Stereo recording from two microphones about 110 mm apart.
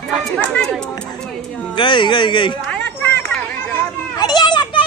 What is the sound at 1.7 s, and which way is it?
Speech, 45° left (ahead or behind).